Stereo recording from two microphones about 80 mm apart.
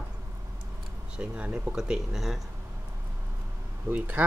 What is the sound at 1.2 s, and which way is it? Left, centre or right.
Speech, centre.